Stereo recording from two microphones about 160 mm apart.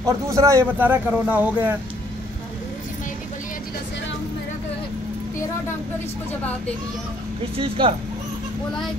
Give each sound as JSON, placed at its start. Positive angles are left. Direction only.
{"t": 0.0, "sound": "speech", "side_deg": -20}
{"t": 7.5, "sound": "speech", "side_deg": -35}